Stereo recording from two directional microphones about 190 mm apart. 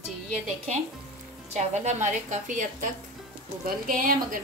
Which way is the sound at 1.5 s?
40° right (ahead or behind).